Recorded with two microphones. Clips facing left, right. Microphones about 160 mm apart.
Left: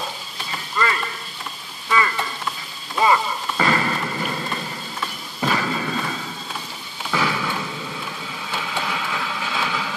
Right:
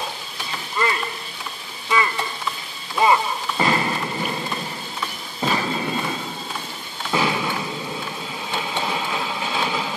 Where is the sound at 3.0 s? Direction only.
15° right (ahead or behind).